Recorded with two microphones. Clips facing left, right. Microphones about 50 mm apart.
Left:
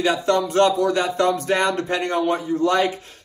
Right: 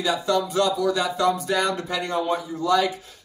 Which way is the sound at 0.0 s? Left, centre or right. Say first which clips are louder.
Left 3 dB; left.